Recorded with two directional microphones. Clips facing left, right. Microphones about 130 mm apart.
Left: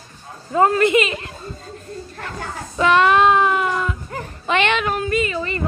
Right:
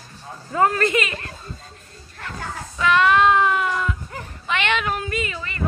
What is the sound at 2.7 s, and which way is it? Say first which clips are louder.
Child singing: left 3 dB; 25° left (ahead or behind).